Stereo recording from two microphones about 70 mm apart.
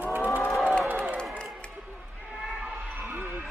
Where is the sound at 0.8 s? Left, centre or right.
Right.